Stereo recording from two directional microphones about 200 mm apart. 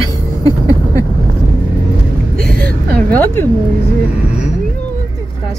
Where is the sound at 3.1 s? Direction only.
10° left (ahead or behind).